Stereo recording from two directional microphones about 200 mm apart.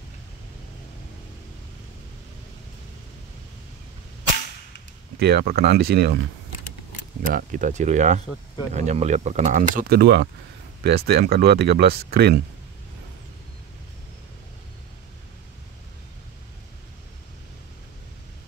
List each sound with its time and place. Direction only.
5.2 s speech: 50° right (ahead or behind)
7.3 s speech: 40° right (ahead or behind)